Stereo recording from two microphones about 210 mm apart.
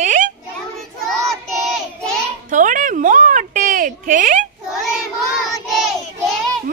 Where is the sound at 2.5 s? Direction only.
40° right (ahead or behind).